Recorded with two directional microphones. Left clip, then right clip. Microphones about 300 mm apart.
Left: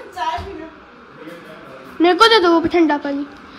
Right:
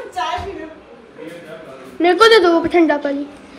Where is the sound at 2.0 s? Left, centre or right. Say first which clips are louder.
Right 1 dB; centre.